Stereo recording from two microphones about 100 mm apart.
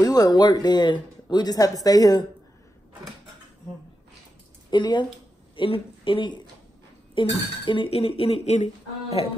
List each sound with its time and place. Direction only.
0.0 s speech: 40° left (ahead or behind)
4.6 s speech: 50° left (ahead or behind)
5.6 s speech: 60° left (ahead or behind); by 9.3 s 75° left (ahead or behind)